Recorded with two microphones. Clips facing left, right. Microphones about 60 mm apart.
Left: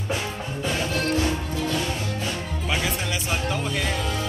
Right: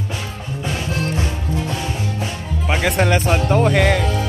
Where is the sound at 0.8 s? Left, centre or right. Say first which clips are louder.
Left 1 dB; right.